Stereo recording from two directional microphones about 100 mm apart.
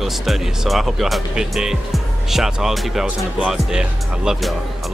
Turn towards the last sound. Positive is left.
turn(degrees=-5)  # may be behind; listen again after turning